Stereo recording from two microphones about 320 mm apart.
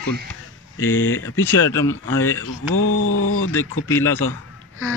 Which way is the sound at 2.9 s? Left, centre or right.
Left.